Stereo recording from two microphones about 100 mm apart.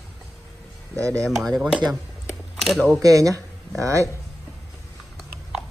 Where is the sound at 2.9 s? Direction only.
35° right (ahead or behind).